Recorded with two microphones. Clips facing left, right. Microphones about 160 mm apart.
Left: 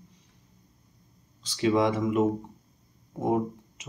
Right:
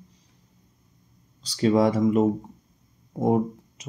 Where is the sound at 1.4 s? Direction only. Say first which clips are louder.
Right 4 dB; 40° right (ahead or behind).